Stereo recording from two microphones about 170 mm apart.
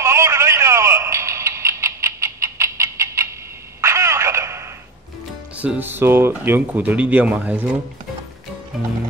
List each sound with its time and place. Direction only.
0.0 s music: 15° right (ahead or behind)
3.8 s a sound: 15° right (ahead or behind)
5.6 s speech: 10° right (ahead or behind)
8.7 s music: centre (ahead or behind)